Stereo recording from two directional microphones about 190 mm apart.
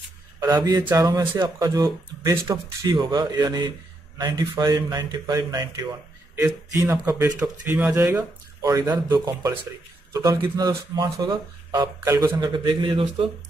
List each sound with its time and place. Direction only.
0.4 s speech: 20° right (ahead or behind)